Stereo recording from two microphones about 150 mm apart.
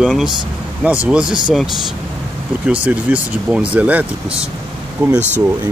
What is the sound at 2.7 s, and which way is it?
Speech, 10° right (ahead or behind).